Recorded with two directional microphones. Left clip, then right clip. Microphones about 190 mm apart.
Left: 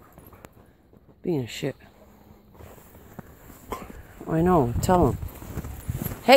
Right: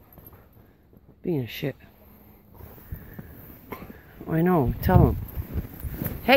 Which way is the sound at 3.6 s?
10° left (ahead or behind).